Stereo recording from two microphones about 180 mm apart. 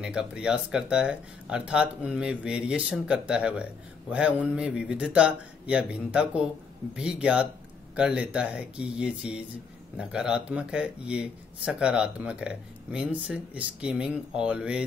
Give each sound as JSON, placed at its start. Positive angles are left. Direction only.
{"t": 0.0, "sound": "speech", "side_deg": -5}